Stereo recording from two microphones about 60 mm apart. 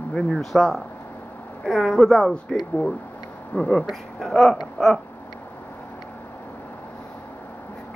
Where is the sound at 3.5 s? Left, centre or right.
Centre.